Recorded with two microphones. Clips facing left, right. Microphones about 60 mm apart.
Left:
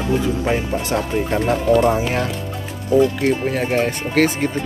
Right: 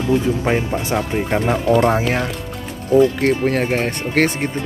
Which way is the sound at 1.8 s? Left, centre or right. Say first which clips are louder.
Right 1 dB; right.